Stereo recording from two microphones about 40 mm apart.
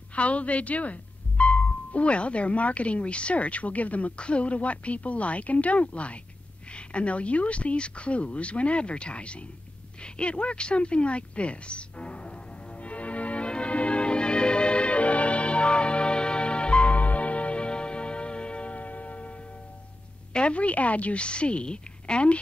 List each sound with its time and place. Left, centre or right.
0.1 s speech: left
12.8 s music: left
20.3 s speech: left